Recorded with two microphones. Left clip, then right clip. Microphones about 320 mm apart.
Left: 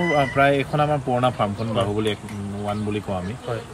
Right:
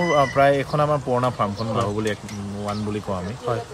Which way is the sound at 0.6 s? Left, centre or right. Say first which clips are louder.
Even; centre.